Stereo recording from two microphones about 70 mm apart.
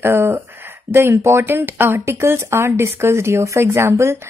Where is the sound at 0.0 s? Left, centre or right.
Right.